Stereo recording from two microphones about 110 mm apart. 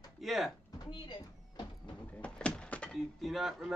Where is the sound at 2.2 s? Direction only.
10° left (ahead or behind).